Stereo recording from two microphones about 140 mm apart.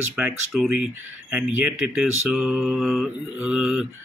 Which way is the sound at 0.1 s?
5° right (ahead or behind).